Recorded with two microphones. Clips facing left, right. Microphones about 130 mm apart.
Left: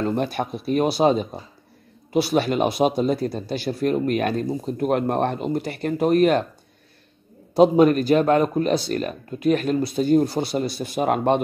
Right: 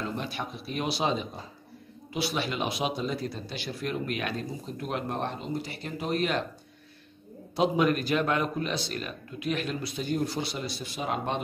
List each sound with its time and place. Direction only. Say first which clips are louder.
0.0 s speech: left 10 dB; 50° left (ahead or behind)
7.5 s speech: left 10 dB; 40° left (ahead or behind); by 11.4 s 55° left (ahead or behind)